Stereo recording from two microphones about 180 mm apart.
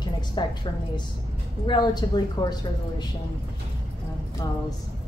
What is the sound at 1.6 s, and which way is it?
Speech, 25° left (ahead or behind).